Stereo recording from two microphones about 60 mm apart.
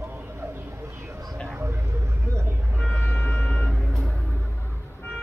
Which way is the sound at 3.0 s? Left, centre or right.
Centre.